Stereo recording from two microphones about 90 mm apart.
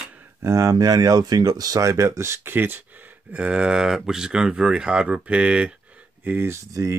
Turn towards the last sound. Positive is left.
turn(degrees=-35)  # may be behind; listen again after turning